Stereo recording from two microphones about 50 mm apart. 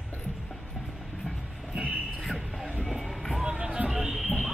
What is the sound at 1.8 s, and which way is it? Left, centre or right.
Music, centre.